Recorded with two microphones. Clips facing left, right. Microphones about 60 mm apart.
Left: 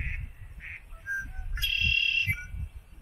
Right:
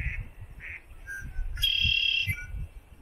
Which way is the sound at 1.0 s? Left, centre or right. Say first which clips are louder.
Left 7 dB; centre.